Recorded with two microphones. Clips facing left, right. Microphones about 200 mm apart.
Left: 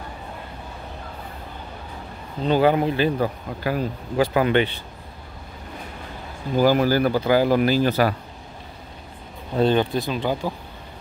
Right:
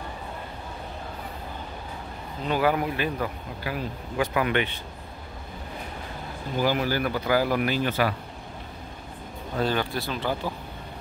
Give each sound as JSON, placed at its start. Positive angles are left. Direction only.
{"t": 2.4, "sound": "speech", "side_deg": 30}
{"t": 6.6, "sound": "speech", "side_deg": 40}
{"t": 9.6, "sound": "speech", "side_deg": 25}